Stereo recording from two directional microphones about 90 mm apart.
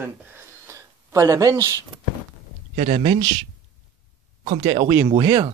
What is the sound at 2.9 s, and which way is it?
Speech, 85° right.